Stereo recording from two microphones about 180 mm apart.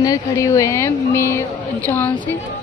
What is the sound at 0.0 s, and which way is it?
A woman's voice, 20° left (ahead or behind).